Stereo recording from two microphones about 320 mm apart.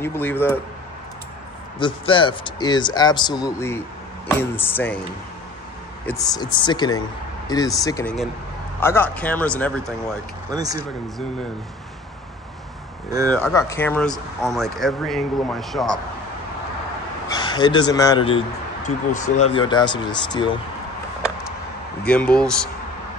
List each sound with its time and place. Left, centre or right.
0.0 s speech: centre
1.8 s speech: centre
6.0 s speech: centre
10.5 s speech: centre
13.3 s speech: centre
17.3 s speech: centre
22.0 s speech: centre